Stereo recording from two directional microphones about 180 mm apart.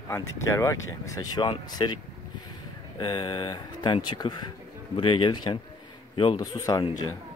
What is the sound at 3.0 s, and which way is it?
A man's voice, 25° left (ahead or behind).